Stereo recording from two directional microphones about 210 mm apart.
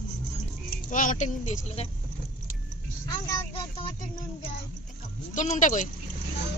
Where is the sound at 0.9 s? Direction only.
40° left (ahead or behind).